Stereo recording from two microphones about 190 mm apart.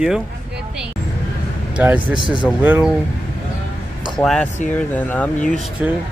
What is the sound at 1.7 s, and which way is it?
Mantra, 5° right (ahead or behind).